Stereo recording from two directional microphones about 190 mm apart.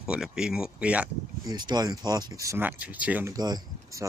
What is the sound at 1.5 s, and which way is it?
Speech, 20° right (ahead or behind).